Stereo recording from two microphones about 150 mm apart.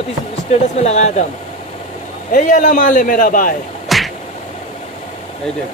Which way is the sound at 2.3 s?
60° left (ahead or behind).